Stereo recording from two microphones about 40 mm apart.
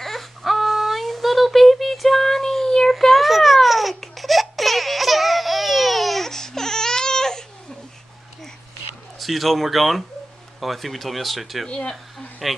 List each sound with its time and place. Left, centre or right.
0.0 s a sound: centre
2.9 s babbling: centre
3.9 s baby cry: centre
9.2 s speech: centre
11.6 s speech: left
12.4 s speech: centre